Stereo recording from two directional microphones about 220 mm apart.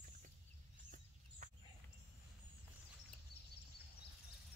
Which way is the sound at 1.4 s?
35° right (ahead or behind).